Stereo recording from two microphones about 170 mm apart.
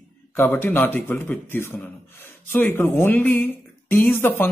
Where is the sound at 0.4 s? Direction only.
10° left (ahead or behind).